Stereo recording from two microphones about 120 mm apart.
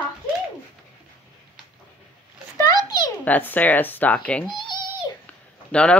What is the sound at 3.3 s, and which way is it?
Speech, 15° left (ahead or behind).